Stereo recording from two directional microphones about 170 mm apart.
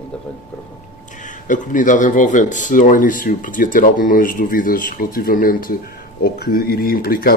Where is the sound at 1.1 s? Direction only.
50° left (ahead or behind).